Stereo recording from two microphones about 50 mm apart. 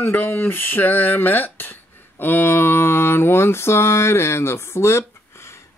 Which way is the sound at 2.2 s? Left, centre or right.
Left.